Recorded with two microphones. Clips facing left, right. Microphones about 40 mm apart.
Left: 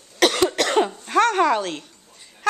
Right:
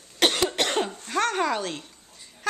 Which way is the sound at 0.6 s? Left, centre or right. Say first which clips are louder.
Left 6 dB; centre.